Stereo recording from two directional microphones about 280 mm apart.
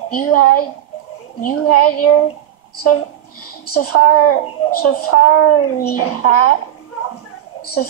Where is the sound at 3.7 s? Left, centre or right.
Left.